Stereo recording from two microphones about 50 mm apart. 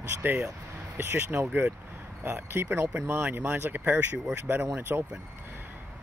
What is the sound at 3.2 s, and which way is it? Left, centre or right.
Speech, right.